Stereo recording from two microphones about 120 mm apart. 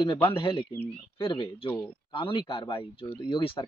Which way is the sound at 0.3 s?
40° left (ahead or behind).